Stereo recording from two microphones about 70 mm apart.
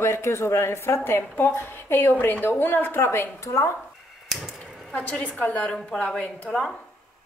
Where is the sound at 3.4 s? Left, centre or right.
Left.